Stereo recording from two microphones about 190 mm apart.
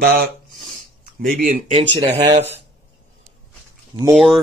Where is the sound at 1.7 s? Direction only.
30° right (ahead or behind).